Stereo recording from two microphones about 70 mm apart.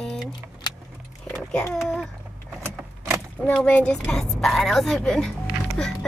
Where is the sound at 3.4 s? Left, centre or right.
Left.